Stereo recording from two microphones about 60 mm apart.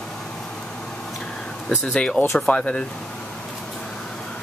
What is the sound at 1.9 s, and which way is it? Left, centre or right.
Speech, centre.